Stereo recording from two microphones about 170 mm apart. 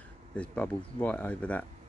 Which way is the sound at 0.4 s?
10° left (ahead or behind).